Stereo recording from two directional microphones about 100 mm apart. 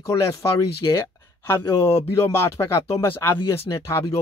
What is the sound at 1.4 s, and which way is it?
Speech, 25° left (ahead or behind).